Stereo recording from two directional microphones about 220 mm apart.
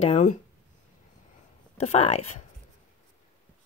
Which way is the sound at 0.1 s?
35° left (ahead or behind).